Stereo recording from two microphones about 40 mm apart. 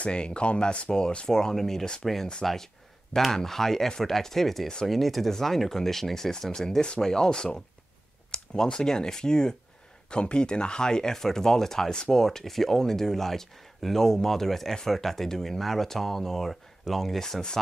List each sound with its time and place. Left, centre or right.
0.0 s speech: left; by 17.4 s centre